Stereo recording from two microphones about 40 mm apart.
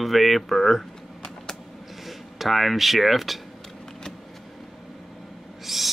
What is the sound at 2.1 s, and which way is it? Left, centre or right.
Speech, centre.